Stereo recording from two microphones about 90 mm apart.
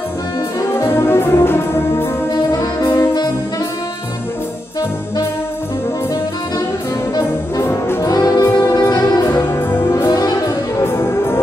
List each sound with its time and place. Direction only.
0.7 s music: 30° left (ahead or behind)
2.5 s music: 50° left (ahead or behind)
7.2 s brass instrument: 30° left (ahead or behind)
8.4 s music: 30° left (ahead or behind)
8.7 s music: 50° left (ahead or behind)
9.3 s music: 25° left (ahead or behind)